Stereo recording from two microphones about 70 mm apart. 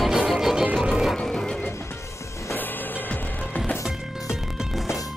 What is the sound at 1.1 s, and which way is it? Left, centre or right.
Music, centre.